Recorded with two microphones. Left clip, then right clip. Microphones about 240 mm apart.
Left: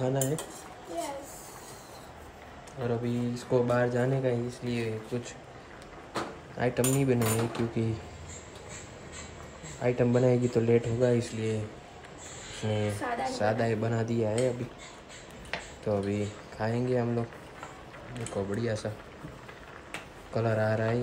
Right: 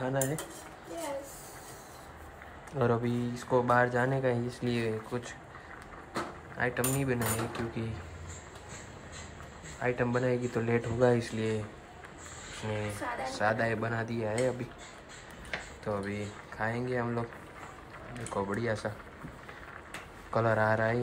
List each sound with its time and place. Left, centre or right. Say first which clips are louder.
0.0 s speech: left 2 dB; centre
2.8 s speech: right 2 dB; centre
6.1 s cutlery: left 1 dB; centre
9.8 s speech: left 4 dB; centre
12.6 s speech: left 4 dB; centre
19.9 s a sound: right 1 dB; centre